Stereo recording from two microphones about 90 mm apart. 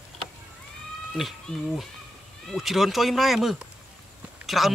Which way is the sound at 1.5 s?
10° left (ahead or behind).